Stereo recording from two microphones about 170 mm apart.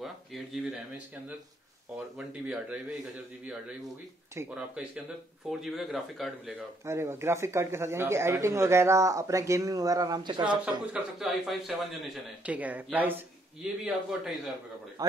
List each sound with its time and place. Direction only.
0.0 s speech: 5° right (ahead or behind)
2.1 s speech: 5° right (ahead or behind)
4.4 s speech: 5° right (ahead or behind)
6.9 s speech: 15° right (ahead or behind)
10.6 s speech: 5° right (ahead or behind)
15.0 s a man's voice: 20° right (ahead or behind)